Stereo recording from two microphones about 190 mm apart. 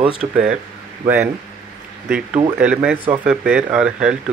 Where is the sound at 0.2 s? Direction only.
5° right (ahead or behind).